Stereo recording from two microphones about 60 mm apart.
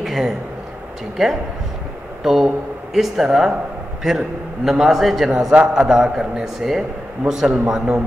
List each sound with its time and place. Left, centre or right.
0.0 s a sound: centre
1.1 s a man's voice: centre
5.5 s a man's voice: centre